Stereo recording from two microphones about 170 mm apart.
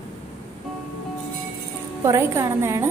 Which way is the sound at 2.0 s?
15° right (ahead or behind).